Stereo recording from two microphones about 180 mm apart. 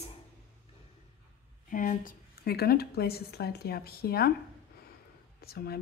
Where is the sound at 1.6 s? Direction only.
50° left (ahead or behind).